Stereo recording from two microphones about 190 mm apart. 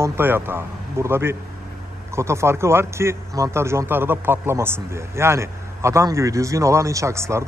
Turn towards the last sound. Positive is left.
turn(degrees=-15)  # may be behind; listen again after turning